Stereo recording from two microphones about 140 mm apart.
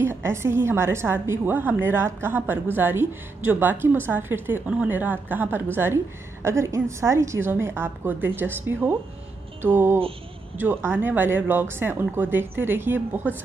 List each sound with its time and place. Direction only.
0.0 s a woman's voice: 15° right (ahead or behind)
9.6 s music: 15° right (ahead or behind)
10.6 s a woman's voice: 15° right (ahead or behind)